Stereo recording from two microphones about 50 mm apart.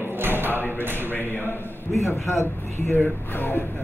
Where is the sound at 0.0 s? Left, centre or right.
Right.